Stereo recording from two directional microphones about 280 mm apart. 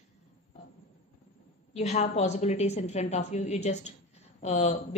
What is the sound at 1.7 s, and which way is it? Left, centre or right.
A woman's voice, left.